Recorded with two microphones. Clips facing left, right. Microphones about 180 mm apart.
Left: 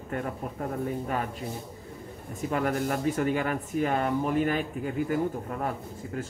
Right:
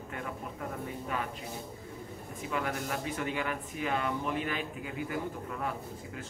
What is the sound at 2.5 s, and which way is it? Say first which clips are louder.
Speech: left 7 dB; 45° left (ahead or behind).